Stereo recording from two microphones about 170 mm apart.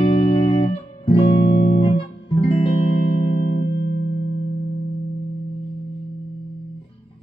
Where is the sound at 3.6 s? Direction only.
90° left.